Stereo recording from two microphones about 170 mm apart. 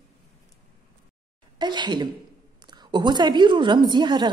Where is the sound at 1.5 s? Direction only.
25° right (ahead or behind).